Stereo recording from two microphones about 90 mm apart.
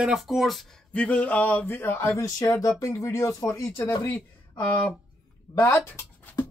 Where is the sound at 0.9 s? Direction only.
15° left (ahead or behind).